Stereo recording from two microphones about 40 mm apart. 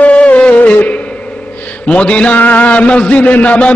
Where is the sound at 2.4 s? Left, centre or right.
Left.